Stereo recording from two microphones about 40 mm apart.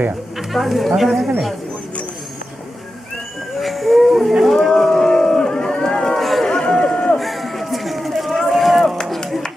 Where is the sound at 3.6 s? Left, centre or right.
Centre.